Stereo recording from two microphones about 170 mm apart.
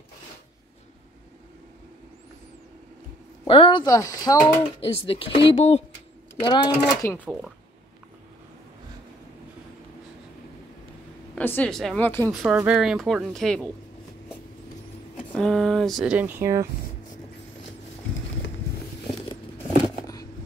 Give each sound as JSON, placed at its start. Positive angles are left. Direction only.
{"t": 3.4, "sound": "speech", "side_deg": 30}
{"t": 4.8, "sound": "speech", "side_deg": 35}
{"t": 6.4, "sound": "speech", "side_deg": 25}
{"t": 11.3, "sound": "a woman's voice", "side_deg": 10}
{"t": 12.3, "sound": "speech", "side_deg": -5}
{"t": 15.3, "sound": "speech", "side_deg": 5}
{"t": 19.8, "sound": "a sound", "side_deg": 20}